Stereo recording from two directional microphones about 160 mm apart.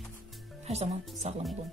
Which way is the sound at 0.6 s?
40° right (ahead or behind).